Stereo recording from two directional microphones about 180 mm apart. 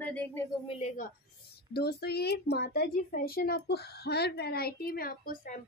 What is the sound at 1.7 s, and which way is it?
A woman's voice, 60° left (ahead or behind).